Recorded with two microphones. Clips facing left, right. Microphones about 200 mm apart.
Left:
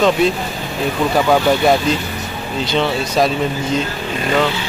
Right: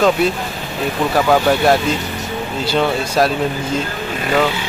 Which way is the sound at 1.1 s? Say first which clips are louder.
Even; centre (ahead or behind).